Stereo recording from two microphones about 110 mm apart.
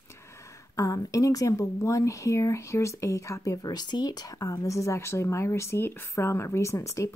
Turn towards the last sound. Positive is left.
turn(degrees=30)  # may be behind; listen again after turning